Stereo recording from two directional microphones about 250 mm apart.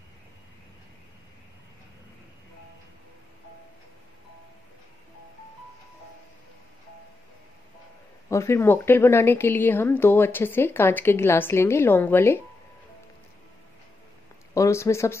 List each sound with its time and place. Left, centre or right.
8.3 s a woman's voice: centre
14.5 s speech: centre